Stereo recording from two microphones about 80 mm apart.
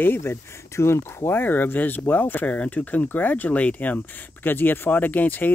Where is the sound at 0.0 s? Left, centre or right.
Left.